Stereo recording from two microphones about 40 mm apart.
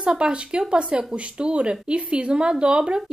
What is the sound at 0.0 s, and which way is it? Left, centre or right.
Speech, right.